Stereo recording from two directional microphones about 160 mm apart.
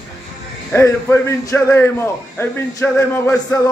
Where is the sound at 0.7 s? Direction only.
15° left (ahead or behind).